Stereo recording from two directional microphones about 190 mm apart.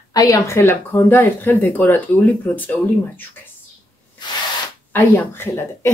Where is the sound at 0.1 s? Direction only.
20° left (ahead or behind).